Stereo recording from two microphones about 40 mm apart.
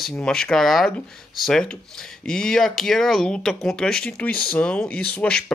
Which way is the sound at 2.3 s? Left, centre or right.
Centre.